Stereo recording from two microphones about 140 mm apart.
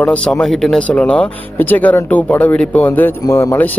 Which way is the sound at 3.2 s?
20° left (ahead or behind).